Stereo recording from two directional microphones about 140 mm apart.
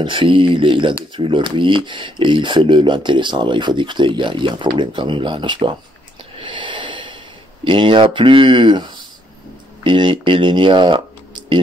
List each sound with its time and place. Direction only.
0.0 s speech: 35° right (ahead or behind)
6.3 s snort: 35° right (ahead or behind)
7.6 s speech: 35° right (ahead or behind)